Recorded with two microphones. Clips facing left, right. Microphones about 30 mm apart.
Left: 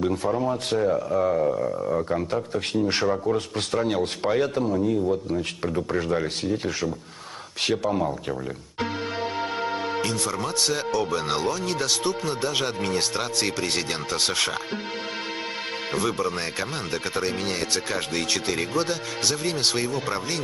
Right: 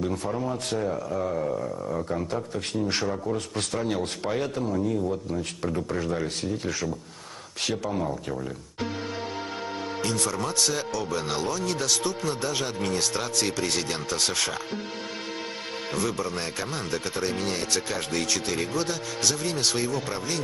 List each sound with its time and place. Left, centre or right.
0.0 s speech: left
7.9 s music: centre
10.3 s speech: centre
16.1 s speech: left